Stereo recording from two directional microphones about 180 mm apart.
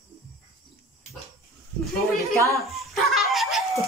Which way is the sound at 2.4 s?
15° left (ahead or behind).